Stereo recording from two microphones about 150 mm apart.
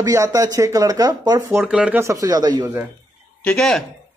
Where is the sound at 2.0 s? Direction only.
25° right (ahead or behind).